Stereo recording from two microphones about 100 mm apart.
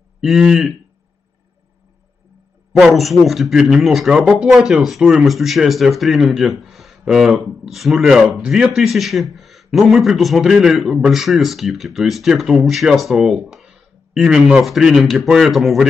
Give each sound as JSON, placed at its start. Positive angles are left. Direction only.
{"t": 0.2, "sound": "speech", "side_deg": -5}
{"t": 2.8, "sound": "speech", "side_deg": 0}